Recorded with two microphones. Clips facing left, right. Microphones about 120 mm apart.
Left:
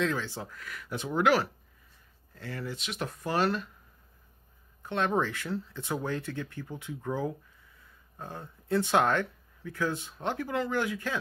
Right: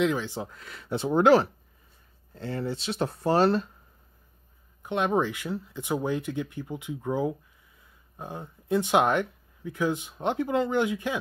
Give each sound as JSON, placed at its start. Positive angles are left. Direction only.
{"t": 0.0, "sound": "speech", "side_deg": -15}
{"t": 4.8, "sound": "speech", "side_deg": -15}